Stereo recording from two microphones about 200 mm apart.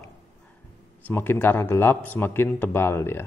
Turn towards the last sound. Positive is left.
turn(degrees=10)  # may be behind; listen again after turning